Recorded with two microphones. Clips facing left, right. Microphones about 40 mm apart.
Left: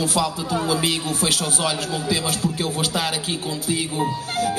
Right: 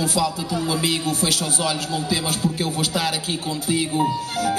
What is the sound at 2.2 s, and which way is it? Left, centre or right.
Speech, right.